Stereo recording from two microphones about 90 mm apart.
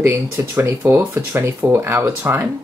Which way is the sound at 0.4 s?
30° right (ahead or behind).